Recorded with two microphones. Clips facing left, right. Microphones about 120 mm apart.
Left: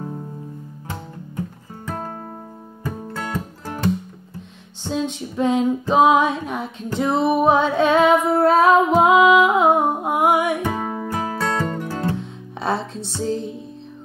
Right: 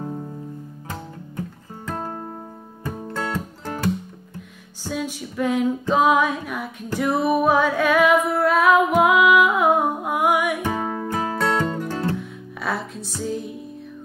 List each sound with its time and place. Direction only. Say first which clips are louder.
2.8 s music: right 1 dB; 5° left (ahead or behind)
4.8 s female singing: left 4 dB; 25° left (ahead or behind)
8.4 s music: left 4 dB; 30° left (ahead or behind)
10.8 s music: even; 10° left (ahead or behind)
12.1 s music: left 1 dB; 25° left (ahead or behind)